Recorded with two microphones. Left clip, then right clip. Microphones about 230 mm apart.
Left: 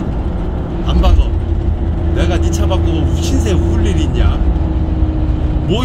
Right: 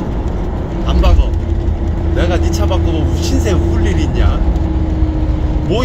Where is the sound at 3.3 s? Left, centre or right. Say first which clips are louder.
Right 1 dB; centre.